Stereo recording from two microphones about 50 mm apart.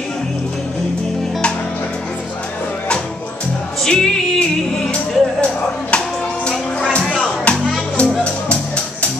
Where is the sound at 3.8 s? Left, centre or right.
Centre.